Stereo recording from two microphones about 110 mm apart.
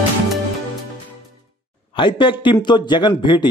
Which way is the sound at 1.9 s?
50° left (ahead or behind).